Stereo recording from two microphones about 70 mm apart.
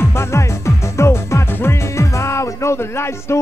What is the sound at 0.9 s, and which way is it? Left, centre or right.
Music, left.